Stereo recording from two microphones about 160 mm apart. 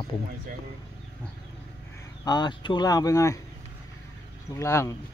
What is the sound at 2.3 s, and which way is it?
Speech, 25° left (ahead or behind).